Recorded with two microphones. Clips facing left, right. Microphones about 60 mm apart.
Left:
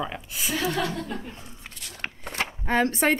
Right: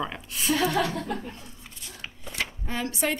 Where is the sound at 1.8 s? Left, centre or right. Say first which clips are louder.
Left 6 dB; left.